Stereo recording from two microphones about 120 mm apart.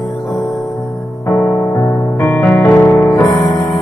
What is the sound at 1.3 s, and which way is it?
Music, 15° left (ahead or behind).